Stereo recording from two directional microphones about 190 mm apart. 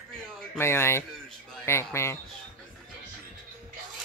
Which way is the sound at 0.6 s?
15° left (ahead or behind).